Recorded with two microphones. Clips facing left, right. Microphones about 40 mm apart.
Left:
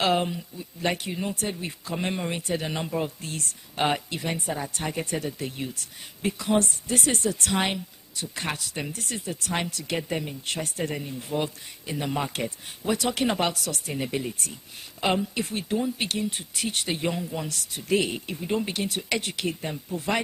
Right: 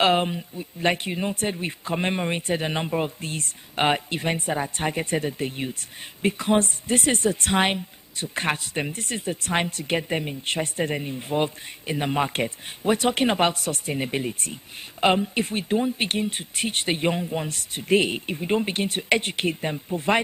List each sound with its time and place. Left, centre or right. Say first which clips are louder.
0.0 s speech: right 3 dB; right